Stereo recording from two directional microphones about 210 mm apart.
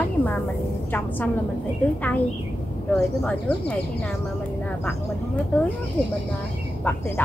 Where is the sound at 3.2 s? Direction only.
5° left (ahead or behind).